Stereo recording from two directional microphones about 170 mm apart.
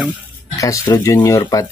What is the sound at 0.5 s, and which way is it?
Speech, 20° left (ahead or behind).